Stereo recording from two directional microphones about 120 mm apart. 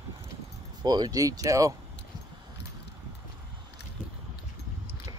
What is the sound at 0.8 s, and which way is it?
Speech, 35° right (ahead or behind).